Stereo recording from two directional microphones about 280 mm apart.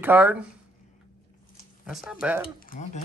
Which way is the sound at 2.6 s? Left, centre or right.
Left.